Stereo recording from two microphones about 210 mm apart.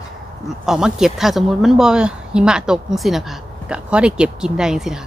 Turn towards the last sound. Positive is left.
turn(degrees=0)  # may be behind; listen again after turning